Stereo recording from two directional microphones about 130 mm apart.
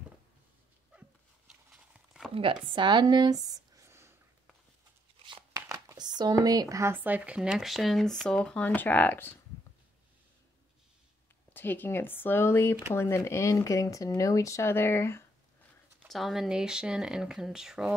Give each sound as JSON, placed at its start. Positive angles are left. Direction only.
{"t": 1.7, "sound": "horse", "side_deg": -5}
{"t": 2.3, "sound": "speech", "side_deg": -40}
{"t": 5.6, "sound": "speech", "side_deg": -25}
{"t": 11.5, "sound": "speech", "side_deg": 15}
{"t": 16.1, "sound": "speech", "side_deg": 0}